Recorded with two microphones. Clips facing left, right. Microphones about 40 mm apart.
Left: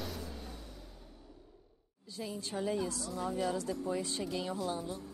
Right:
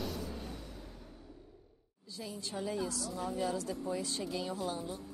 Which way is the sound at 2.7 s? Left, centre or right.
Left.